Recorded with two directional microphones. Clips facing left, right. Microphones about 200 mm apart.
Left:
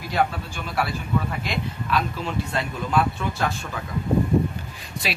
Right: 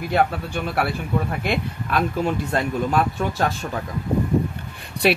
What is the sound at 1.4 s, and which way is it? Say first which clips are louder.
Speech: right 4 dB; 55° right (ahead or behind).